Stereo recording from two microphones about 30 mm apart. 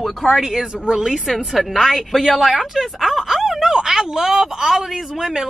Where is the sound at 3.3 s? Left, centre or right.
Centre.